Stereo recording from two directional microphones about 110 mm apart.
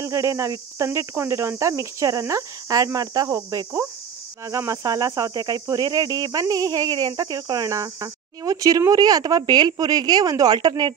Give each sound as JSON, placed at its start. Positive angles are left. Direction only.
{"t": 0.0, "sound": "speech", "side_deg": -30}